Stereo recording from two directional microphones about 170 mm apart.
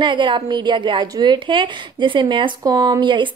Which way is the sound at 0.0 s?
30° right (ahead or behind).